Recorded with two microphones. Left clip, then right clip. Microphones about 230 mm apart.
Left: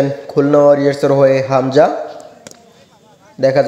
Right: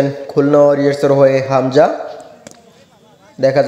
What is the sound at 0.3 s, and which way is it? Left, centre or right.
A man's voice, centre.